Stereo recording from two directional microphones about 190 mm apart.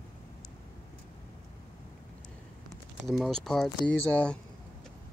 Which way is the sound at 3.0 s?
Centre (ahead or behind).